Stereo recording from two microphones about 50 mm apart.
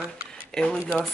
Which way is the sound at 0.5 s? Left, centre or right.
Centre.